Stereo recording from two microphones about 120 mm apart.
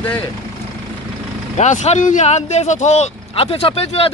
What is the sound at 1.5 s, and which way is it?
Speech, 70° left (ahead or behind).